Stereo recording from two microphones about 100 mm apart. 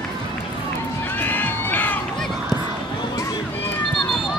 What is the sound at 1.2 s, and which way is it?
Run, 20° left (ahead or behind).